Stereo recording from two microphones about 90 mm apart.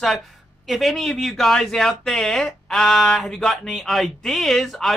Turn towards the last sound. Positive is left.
turn(degrees=5)  # may be behind; listen again after turning